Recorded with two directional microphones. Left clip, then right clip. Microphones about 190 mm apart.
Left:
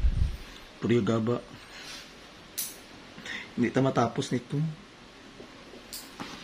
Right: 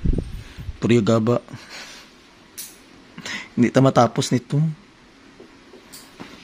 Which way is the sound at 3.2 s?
65° right (ahead or behind).